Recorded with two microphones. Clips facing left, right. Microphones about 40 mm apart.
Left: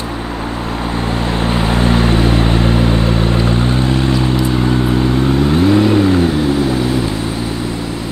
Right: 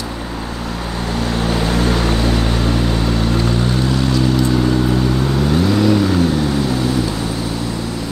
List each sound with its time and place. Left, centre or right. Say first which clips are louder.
1.4 s vehicle: left 2 dB; left
5.5 s vehicle: left 2 dB; left